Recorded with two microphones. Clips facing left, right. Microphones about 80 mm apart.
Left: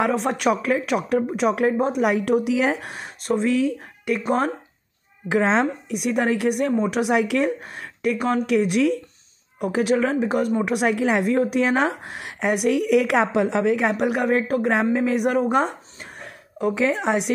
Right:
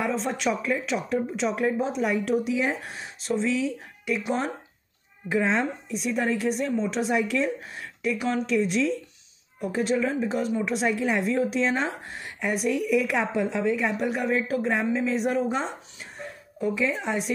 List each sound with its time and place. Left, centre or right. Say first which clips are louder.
0.0 s speech: left 5 dB; left
5.3 s a woman's voice: left 5 dB; left
16.2 s a sound: left 4 dB; left